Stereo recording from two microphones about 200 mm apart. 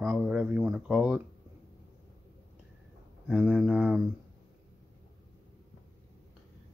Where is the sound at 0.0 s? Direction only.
5° right (ahead or behind).